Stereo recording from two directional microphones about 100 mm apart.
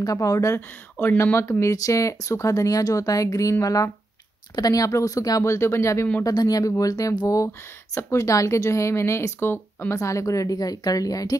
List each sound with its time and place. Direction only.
0.0 s speech: 35° left (ahead or behind)
0.6 s speech: 20° left (ahead or behind)
6.2 s speech: 40° left (ahead or behind)